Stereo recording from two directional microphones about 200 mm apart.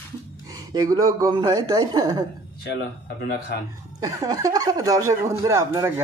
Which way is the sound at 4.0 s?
20° right (ahead or behind).